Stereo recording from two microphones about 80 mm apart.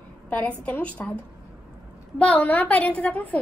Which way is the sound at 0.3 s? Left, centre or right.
Centre.